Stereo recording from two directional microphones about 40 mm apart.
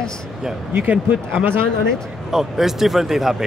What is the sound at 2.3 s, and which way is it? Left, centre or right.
Speech, centre.